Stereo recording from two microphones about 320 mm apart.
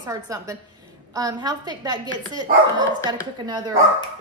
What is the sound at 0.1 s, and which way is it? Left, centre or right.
Speech, centre.